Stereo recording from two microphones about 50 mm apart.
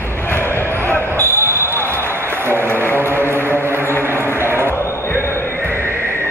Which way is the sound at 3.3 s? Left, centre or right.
Right.